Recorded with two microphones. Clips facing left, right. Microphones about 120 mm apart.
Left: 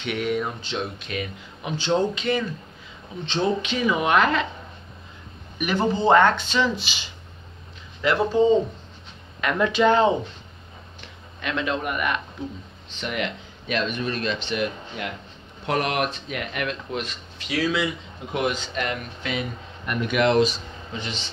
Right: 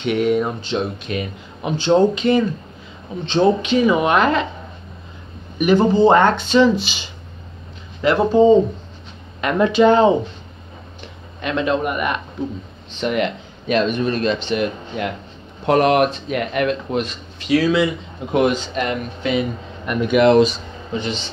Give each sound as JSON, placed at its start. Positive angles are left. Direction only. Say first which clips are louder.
{"t": 0.0, "sound": "speech", "louder": "right 8 dB", "side_deg": -35}
{"t": 5.6, "sound": "speech", "louder": "right 9 dB", "side_deg": -30}
{"t": 8.0, "sound": "speech", "louder": "right 6 dB", "side_deg": -35}
{"t": 11.4, "sound": "speech", "louder": "right 7 dB", "side_deg": -35}
{"t": 13.0, "sound": "speech", "louder": "right 8 dB", "side_deg": -40}
{"t": 18.8, "sound": "speech", "louder": "right 6 dB", "side_deg": -25}